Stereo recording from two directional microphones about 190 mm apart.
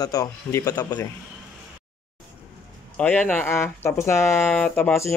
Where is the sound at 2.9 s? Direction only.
10° left (ahead or behind).